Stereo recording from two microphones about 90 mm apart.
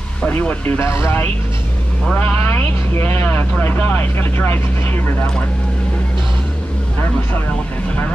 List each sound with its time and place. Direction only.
0.2 s speech: 20° left (ahead or behind)
0.8 s speech: 30° left (ahead or behind)